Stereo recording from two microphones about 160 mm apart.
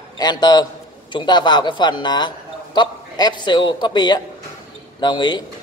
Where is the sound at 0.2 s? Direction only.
25° left (ahead or behind).